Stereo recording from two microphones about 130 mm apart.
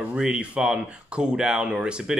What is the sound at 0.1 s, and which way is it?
A man's voice, 10° right (ahead or behind).